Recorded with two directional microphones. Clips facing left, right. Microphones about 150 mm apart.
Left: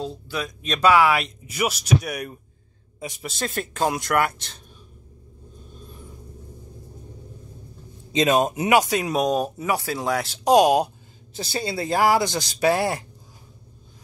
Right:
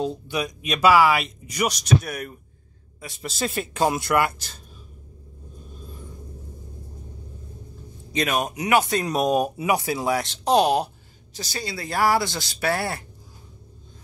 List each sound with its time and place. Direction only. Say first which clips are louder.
0.0 s speech: right 3 dB; 15° right (ahead or behind); by 2.3 s 10° left (ahead or behind)
3.2 s speech: right 2 dB; centre (ahead or behind)
8.1 s speech: left 5 dB; 20° left (ahead or behind)
8.7 s speech: even; 10° left (ahead or behind)
9.2 s speech: right 1 dB; 10° right (ahead or behind)
9.9 s speech: right 1 dB; 5° right (ahead or behind)
10.2 s speech: left 5 dB; 10° left (ahead or behind)
11.3 s speech: left 5 dB; 25° left (ahead or behind)